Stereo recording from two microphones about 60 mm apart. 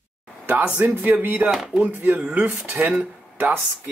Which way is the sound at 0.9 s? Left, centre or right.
Right.